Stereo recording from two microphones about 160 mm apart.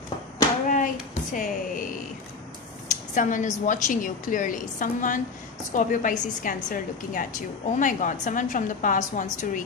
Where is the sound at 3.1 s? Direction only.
50° left (ahead or behind).